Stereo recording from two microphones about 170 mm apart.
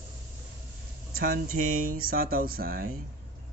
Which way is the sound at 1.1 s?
55° right (ahead or behind).